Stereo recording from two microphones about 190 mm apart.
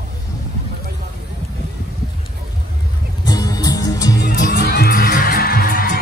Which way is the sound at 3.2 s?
20° left (ahead or behind).